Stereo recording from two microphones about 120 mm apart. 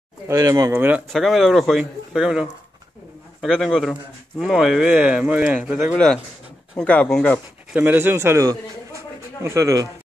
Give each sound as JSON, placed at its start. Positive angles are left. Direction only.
{"t": 0.3, "sound": "speech", "side_deg": -25}
{"t": 1.0, "sound": "speech", "side_deg": 0}
{"t": 6.8, "sound": "speech", "side_deg": 10}
{"t": 7.7, "sound": "a man's voice", "side_deg": -15}